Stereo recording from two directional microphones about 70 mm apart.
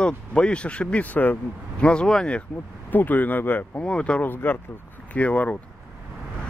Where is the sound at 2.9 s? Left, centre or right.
Left.